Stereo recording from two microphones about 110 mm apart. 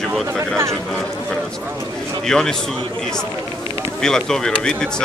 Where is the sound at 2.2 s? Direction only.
5° left (ahead or behind).